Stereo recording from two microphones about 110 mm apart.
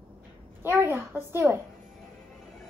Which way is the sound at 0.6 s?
20° right (ahead or behind).